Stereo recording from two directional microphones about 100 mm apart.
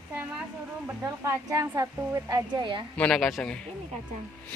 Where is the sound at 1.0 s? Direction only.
30° right (ahead or behind).